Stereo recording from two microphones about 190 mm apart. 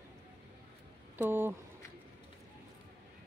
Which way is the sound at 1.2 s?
10° right (ahead or behind).